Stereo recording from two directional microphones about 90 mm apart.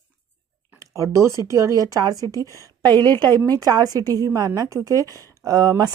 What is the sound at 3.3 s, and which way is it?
Speech, 25° left (ahead or behind).